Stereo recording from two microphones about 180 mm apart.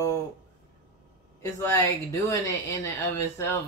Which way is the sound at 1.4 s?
15° left (ahead or behind).